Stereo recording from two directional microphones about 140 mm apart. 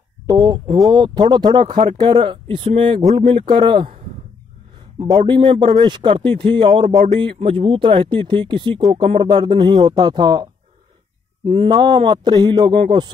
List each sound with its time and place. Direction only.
0.3 s speech: 30° right (ahead or behind)
4.9 s speech: 35° right (ahead or behind)
7.1 s speech: 35° right (ahead or behind)